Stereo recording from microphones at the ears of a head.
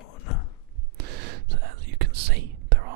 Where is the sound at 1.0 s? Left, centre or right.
Right.